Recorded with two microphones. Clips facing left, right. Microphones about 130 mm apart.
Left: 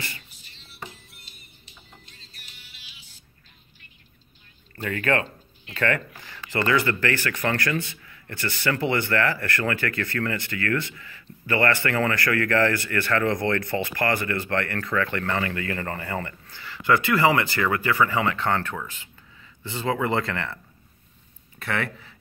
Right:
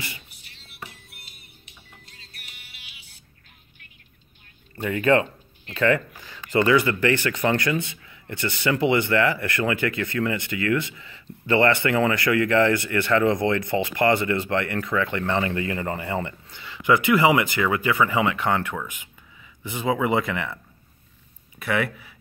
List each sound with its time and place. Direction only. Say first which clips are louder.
0.3 s music: even; 65° right (ahead or behind)
4.7 s speech: right 5 dB; 20° right (ahead or behind)
21.5 s speech: right 4 dB; 10° right (ahead or behind)